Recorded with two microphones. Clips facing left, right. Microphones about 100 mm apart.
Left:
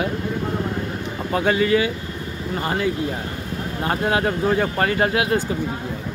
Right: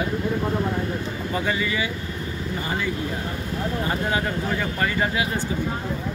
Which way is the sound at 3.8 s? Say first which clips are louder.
Left 7 dB; 70° left (ahead or behind).